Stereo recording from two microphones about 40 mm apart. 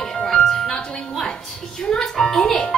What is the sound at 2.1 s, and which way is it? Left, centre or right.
Speech, centre.